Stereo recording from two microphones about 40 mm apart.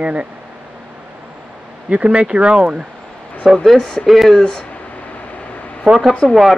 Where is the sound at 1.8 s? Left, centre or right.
Right.